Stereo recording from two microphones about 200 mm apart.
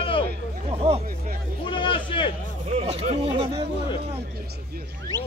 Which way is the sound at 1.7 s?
25° left (ahead or behind).